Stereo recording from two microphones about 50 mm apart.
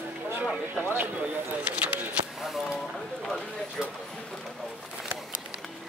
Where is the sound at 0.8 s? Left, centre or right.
Right.